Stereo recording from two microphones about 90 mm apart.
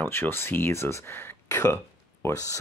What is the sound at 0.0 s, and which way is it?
Speech, 25° left (ahead or behind).